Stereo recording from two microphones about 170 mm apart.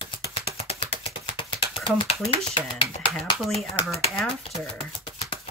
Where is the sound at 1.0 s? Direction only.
30° left (ahead or behind).